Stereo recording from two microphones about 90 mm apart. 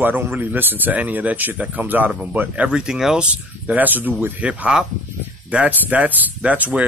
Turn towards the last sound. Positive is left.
turn(degrees=-15)  # may be behind; listen again after turning